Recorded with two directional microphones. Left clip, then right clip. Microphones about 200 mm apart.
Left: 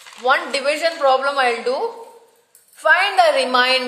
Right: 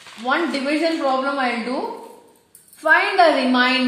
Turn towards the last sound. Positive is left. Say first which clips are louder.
# left 1 dB
turn(degrees=50)  # may be behind; listen again after turning